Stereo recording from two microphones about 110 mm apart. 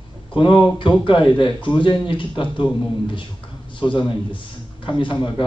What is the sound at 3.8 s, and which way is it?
A man's voice, 50° left (ahead or behind).